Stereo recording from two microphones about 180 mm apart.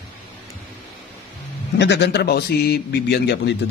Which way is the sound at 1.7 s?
75° left (ahead or behind).